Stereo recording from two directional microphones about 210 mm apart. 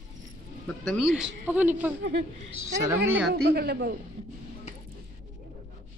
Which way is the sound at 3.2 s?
55° right (ahead or behind).